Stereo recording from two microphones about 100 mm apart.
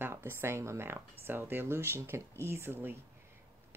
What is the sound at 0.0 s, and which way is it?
Speech, 25° right (ahead or behind).